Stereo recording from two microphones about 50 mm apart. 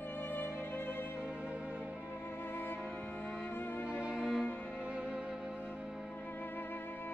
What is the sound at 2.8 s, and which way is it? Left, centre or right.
Music, left.